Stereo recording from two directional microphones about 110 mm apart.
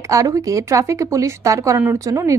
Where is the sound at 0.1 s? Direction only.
30° right (ahead or behind).